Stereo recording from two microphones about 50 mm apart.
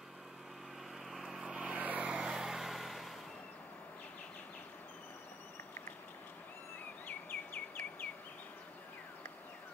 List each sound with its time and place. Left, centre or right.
1.1 s vehicle: centre
1.7 s vehicle: right; by 3.1 s centre
7.1 s bird: left